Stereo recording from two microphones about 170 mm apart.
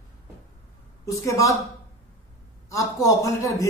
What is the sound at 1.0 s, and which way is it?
Speech, 20° left (ahead or behind).